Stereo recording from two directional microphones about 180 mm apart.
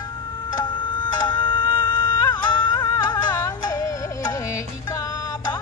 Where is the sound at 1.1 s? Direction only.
25° left (ahead or behind).